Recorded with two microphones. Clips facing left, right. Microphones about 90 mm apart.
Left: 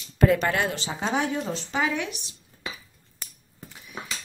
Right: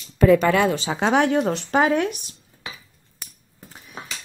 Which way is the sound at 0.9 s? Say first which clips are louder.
Right 8 dB; 70° right (ahead or behind).